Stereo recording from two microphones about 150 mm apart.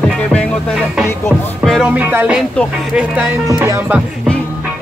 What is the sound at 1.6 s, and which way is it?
Music, centre (ahead or behind).